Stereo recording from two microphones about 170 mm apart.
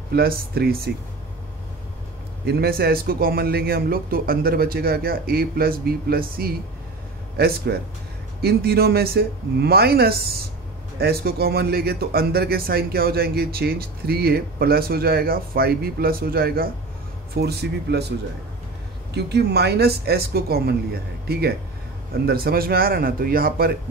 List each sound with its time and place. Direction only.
0.1 s speech: 65° right (ahead or behind)
2.4 s speech: 65° right (ahead or behind)
17.4 s speech: 70° right (ahead or behind)
19.1 s speech: 75° right (ahead or behind)